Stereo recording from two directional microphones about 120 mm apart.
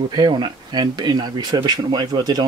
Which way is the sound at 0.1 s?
40° right (ahead or behind).